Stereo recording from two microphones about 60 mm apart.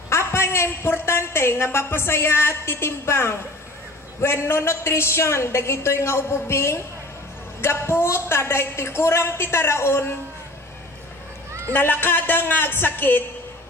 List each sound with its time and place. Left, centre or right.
0.1 s a woman's voice: left
11.7 s speech: left